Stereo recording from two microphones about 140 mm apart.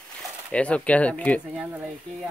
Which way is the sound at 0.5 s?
10° left (ahead or behind).